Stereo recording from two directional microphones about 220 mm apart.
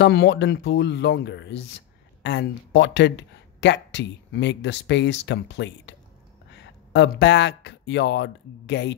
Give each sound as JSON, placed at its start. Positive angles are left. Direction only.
{"t": 0.0, "sound": "speech", "side_deg": 50}